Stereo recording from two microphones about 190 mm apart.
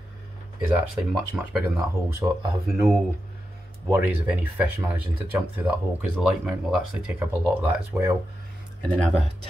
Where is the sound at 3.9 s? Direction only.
10° right (ahead or behind).